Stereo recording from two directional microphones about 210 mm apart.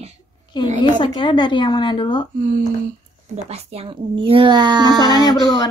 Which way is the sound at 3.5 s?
30° right (ahead or behind).